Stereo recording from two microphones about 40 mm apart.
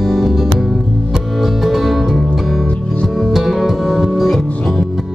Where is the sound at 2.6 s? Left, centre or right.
Left.